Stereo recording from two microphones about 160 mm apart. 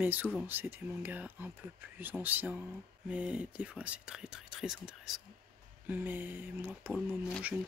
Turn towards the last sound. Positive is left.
turn(degrees=-10)  # may be behind; listen again after turning